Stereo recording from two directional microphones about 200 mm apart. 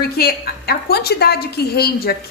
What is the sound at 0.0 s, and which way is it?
A woman's voice, 50° left (ahead or behind).